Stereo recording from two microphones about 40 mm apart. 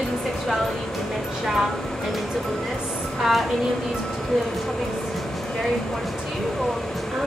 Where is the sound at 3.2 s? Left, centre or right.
Centre.